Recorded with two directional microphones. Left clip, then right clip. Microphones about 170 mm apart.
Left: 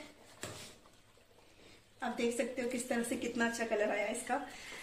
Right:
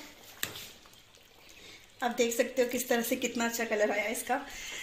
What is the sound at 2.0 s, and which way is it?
A woman's voice, 35° right (ahead or behind).